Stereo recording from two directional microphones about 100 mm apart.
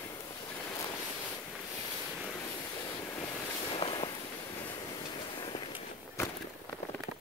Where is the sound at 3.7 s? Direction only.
60° left (ahead or behind).